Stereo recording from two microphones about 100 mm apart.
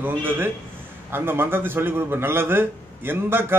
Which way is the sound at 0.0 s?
20° right (ahead or behind).